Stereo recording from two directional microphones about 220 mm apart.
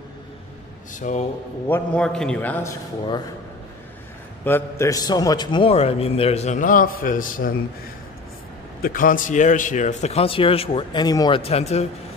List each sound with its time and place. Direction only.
0.9 s speech: 35° left (ahead or behind)
1.7 s a man's voice: 5° left (ahead or behind)
4.5 s a man's voice: 10° left (ahead or behind); by 7.5 s 40° left (ahead or behind)
8.8 s a man's voice: 40° left (ahead or behind)